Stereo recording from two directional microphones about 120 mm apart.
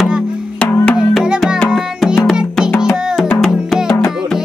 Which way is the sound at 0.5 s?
10° left (ahead or behind).